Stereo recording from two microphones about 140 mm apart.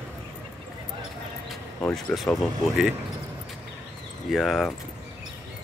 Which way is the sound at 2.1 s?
Centre (ahead or behind).